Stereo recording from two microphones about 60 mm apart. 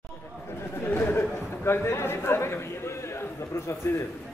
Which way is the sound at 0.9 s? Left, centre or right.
Left.